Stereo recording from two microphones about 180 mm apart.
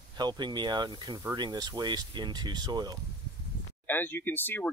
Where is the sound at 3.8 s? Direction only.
10° left (ahead or behind).